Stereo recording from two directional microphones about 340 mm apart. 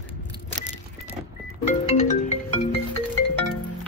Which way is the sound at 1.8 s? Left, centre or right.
Centre.